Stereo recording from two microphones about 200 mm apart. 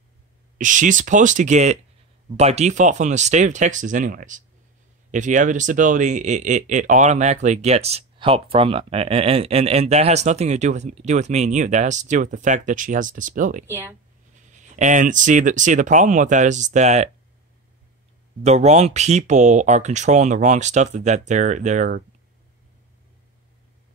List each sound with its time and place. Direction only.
0.6 s speech: 40° right (ahead or behind)
13.7 s speech: 10° right (ahead or behind)
14.3 s speech: 35° right (ahead or behind)
18.4 s speech: 35° right (ahead or behind)